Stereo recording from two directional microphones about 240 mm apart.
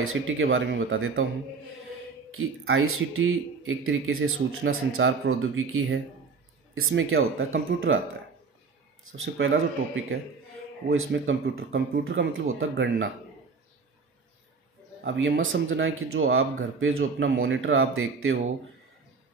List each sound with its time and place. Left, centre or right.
0.0 s speech: right
2.7 s speech: right
9.0 s speech: right
15.0 s speech: right